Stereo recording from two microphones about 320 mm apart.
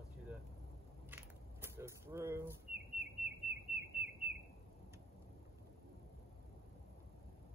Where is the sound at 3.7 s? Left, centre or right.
Left.